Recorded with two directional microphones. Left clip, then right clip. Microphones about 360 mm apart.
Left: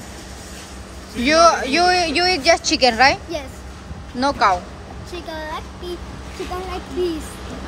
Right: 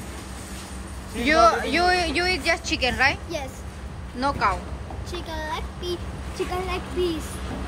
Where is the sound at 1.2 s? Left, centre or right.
Centre.